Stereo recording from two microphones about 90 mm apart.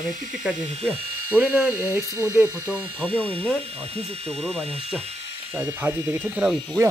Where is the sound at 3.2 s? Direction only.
90° right.